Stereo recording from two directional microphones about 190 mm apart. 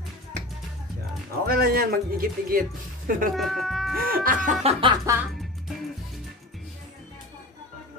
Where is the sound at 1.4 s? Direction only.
50° right (ahead or behind).